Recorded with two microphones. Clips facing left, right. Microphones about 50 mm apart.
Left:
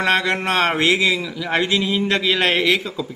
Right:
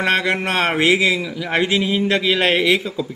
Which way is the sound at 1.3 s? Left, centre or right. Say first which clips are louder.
Right 1 dB; centre.